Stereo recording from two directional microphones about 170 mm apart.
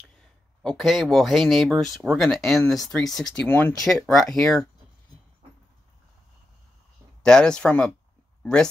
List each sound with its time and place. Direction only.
0.6 s speech: centre (ahead or behind)
7.2 s speech: 5° left (ahead or behind)